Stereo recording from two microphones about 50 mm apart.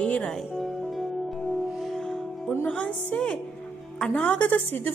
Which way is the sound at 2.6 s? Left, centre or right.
Left.